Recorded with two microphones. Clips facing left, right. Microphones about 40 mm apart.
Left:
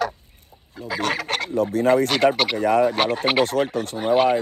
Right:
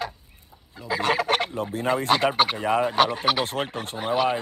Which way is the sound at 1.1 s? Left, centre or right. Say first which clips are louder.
Right 2 dB; right.